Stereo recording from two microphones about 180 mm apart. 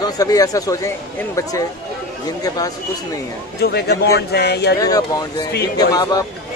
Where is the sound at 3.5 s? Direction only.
65° left (ahead or behind).